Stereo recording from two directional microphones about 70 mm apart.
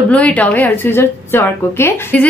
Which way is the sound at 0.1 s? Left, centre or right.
Centre.